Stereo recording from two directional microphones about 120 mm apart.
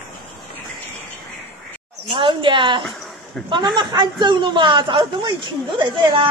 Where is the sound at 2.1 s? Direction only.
40° right (ahead or behind).